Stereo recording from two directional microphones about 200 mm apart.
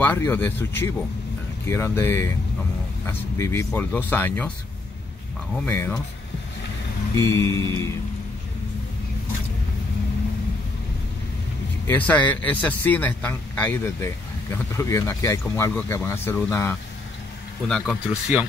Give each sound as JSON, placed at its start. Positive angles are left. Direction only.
{"t": 0.0, "sound": "speech", "side_deg": 10}
{"t": 5.7, "sound": "speech", "side_deg": 10}
{"t": 7.2, "sound": "speech", "side_deg": 15}
{"t": 11.9, "sound": "speech", "side_deg": 10}
{"t": 17.6, "sound": "speech", "side_deg": 0}